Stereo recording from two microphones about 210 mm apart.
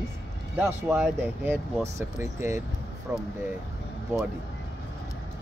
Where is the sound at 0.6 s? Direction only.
5° right (ahead or behind).